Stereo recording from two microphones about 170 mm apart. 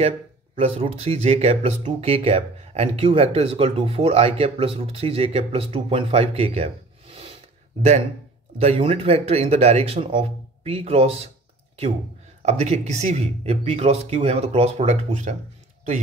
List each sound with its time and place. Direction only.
0.6 s speech: 35° right (ahead or behind)
8.5 s speech: 35° right (ahead or behind)
12.4 s speech: 40° right (ahead or behind)